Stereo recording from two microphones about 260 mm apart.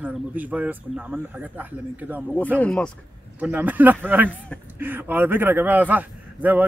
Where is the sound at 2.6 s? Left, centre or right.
Centre.